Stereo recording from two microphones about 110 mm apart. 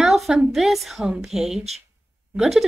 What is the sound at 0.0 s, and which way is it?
A woman's voice, 5° right (ahead or behind).